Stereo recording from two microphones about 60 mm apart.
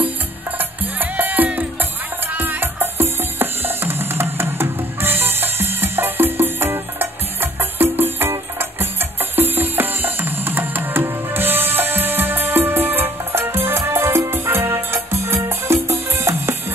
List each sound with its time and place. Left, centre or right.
0.6 s music: right